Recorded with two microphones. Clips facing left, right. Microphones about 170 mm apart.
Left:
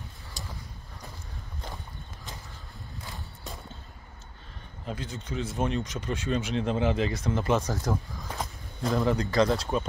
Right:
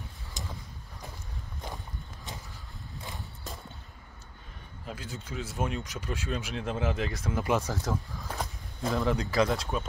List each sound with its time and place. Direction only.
0.4 s vehicle: 20° right (ahead or behind)
4.8 s speech: 5° right (ahead or behind)